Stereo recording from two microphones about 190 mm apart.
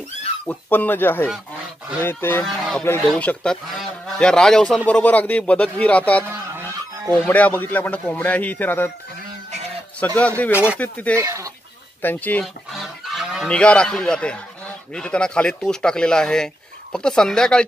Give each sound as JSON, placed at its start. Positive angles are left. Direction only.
{"t": 0.5, "sound": "speech", "side_deg": 10}
{"t": 2.4, "sound": "speech", "side_deg": 0}
{"t": 9.9, "sound": "speech", "side_deg": 5}
{"t": 11.1, "sound": "speech", "side_deg": -15}
{"t": 12.0, "sound": "goose", "side_deg": 10}
{"t": 15.0, "sound": "speech", "side_deg": 5}